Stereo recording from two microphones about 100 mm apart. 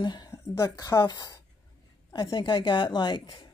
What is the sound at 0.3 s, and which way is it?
A woman's voice, 35° left (ahead or behind).